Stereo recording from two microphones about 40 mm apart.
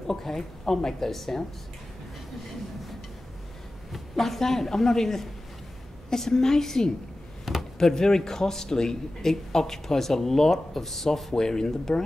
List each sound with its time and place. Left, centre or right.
0.0 s speech: centre
3.9 s a woman's voice: centre
7.5 s a sound: centre
7.8 s speech: centre
11.3 s speech: centre